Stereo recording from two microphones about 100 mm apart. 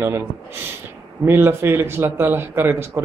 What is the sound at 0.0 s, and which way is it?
A man's voice, 25° right (ahead or behind).